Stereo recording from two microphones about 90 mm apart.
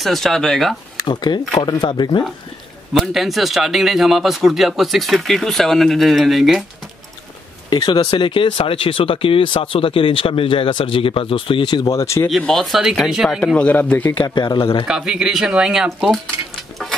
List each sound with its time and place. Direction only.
0.0 s a man's voice: centre (ahead or behind)
1.0 s speech: 55° left (ahead or behind)
1.6 s speech: 65° left (ahead or behind)
2.9 s a man's voice: 5° right (ahead or behind)
7.7 s speech: 55° left (ahead or behind)
11.9 s speech: 35° left (ahead or behind)
12.3 s a man's voice: 5° left (ahead or behind)
13.6 s speech: 15° left (ahead or behind)
14.1 s speech: 60° left (ahead or behind)
14.9 s speech: 5° right (ahead or behind)